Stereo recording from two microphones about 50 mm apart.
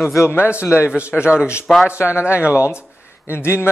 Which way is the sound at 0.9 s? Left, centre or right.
Right.